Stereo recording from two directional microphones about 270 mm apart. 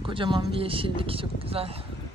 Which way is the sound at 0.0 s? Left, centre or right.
Centre.